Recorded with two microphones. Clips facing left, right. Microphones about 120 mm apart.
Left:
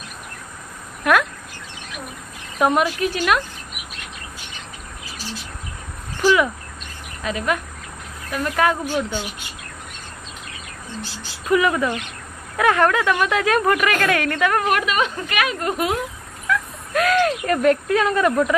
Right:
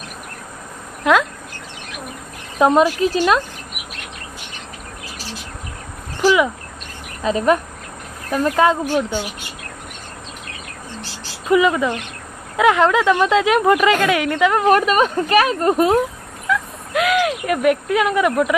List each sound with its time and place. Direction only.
1.0 s a woman's voice: 20° right (ahead or behind)
2.6 s a woman's voice: 30° right (ahead or behind)
6.2 s bird: 15° right (ahead or behind)
7.2 s a woman's voice: 35° right (ahead or behind)
8.5 s a woman's voice: 20° right (ahead or behind)
11.4 s a woman's voice: 20° right (ahead or behind)
14.7 s a woman's voice: 40° right (ahead or behind)
16.4 s speech: 15° right (ahead or behind)